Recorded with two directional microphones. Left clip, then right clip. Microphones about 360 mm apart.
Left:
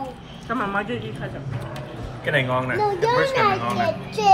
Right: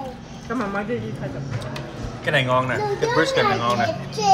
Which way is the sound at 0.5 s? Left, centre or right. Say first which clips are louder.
Left 2 dB; left.